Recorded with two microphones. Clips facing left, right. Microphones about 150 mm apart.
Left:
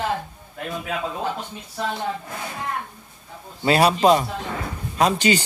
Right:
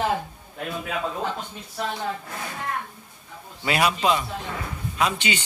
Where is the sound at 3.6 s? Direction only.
35° left (ahead or behind).